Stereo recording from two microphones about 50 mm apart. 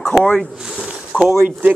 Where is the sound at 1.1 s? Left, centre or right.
Right.